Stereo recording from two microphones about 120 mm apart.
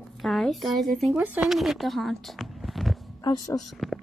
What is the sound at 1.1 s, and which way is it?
Speech, 15° right (ahead or behind).